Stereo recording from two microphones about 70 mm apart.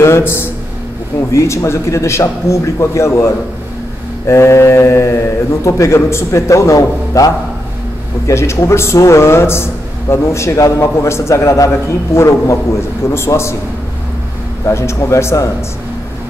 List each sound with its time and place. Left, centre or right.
0.0 s a man's voice: left
4.3 s a man's voice: left
14.7 s a man's voice: left